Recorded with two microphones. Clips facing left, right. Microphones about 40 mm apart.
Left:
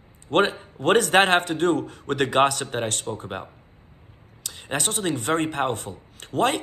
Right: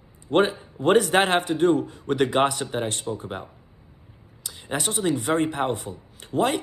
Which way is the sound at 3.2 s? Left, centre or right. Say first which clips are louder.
Left 1 dB; left.